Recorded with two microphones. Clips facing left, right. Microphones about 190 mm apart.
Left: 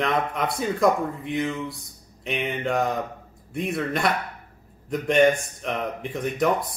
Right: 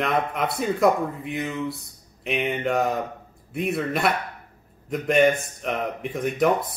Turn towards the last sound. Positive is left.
turn(degrees=0)  # may be behind; listen again after turning